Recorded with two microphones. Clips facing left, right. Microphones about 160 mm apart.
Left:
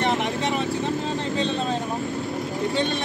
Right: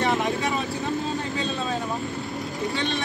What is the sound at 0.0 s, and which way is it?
Vehicle, 20° left (ahead or behind).